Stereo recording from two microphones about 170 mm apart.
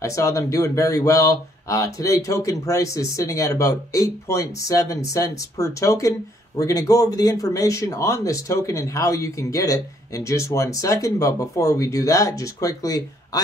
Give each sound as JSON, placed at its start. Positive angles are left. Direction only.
{"t": 0.0, "sound": "speech", "side_deg": 20}